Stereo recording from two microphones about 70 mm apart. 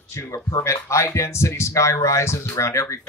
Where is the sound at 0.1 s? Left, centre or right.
Left.